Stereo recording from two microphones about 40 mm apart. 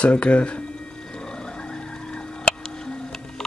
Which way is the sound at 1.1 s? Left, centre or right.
Centre.